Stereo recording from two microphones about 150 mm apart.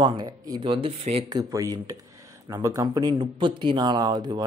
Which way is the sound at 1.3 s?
25° right (ahead or behind).